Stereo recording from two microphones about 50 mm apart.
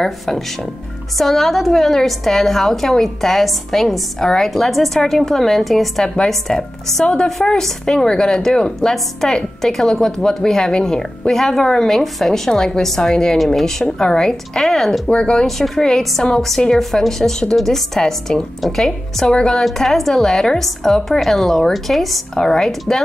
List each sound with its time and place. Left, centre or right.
1.1 s a woman's voice: centre
15.0 s speech: centre
15.4 s a woman's voice: centre
19.6 s a woman's voice: centre